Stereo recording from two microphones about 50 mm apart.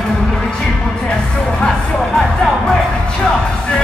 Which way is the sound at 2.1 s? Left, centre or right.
Centre.